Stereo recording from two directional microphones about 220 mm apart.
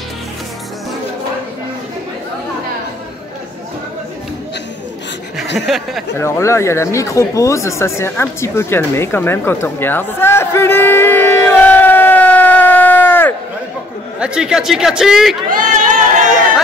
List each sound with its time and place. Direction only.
5.7 s speech: centre (ahead or behind)
6.1 s speech: 10° left (ahead or behind)
14.2 s speech: 5° right (ahead or behind)
15.5 s chatter: 35° right (ahead or behind)